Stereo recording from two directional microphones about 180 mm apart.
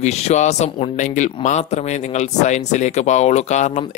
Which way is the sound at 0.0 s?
40° left (ahead or behind).